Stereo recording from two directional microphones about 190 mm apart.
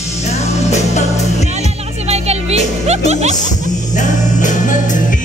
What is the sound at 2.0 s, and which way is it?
Music, 35° right (ahead or behind).